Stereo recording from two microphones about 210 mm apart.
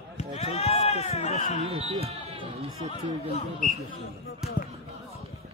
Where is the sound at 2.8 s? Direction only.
30° right (ahead or behind).